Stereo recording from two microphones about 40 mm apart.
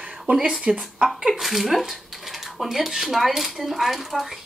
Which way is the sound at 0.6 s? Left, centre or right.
Centre.